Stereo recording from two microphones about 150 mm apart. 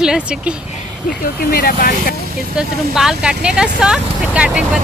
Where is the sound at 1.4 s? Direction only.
75° left (ahead or behind).